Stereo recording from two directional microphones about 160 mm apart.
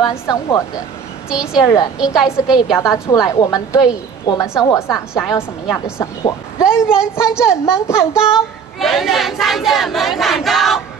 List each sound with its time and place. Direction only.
0.3 s a woman's voice: 20° left (ahead or behind)
1.3 s speech: 5° right (ahead or behind)
1.6 s a woman's voice: 20° left (ahead or behind)
2.0 s speech: 5° right (ahead or behind)
2.8 s a woman's voice: 20° left (ahead or behind)
6.6 s speech: 5° right (ahead or behind)
7.6 s a child's voice: 15° left (ahead or behind)
8.3 s speech: centre (ahead or behind)